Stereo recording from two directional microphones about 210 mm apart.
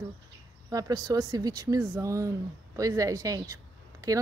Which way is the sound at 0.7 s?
20° right (ahead or behind).